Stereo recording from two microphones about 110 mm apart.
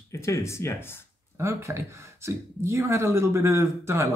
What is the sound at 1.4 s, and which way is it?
A man's voice, 25° right (ahead or behind).